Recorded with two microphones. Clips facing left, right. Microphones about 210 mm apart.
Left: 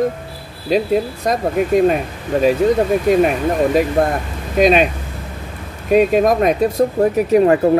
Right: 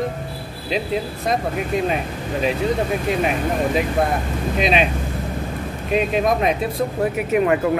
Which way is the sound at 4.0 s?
50° left (ahead or behind).